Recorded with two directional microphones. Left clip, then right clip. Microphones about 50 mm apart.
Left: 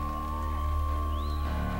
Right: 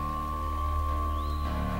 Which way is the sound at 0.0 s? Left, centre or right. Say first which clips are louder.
Right 2 dB; right.